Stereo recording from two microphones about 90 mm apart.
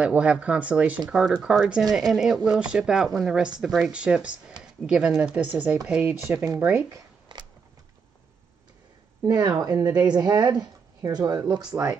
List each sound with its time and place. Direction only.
0.0 s speech: 10° right (ahead or behind)
6.9 s shuffling cards: 55° right (ahead or behind)
9.2 s a woman's voice: 50° right (ahead or behind)
11.7 s speech: 25° right (ahead or behind)